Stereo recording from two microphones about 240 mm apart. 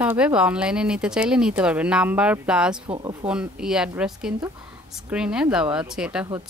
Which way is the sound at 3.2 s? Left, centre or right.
Centre.